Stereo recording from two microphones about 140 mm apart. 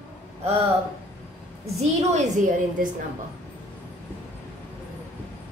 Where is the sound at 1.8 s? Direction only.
50° right (ahead or behind).